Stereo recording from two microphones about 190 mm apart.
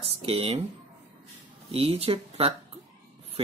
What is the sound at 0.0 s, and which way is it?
Speech, 30° right (ahead or behind).